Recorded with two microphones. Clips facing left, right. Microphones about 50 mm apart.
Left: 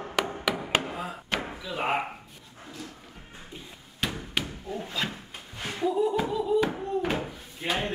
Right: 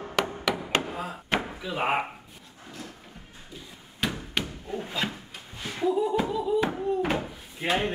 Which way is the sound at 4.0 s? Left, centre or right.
Centre.